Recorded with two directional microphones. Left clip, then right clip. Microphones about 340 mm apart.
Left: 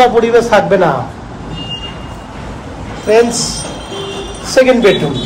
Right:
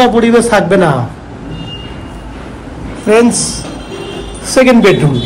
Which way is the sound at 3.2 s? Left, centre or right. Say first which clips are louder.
Right 3 dB; centre.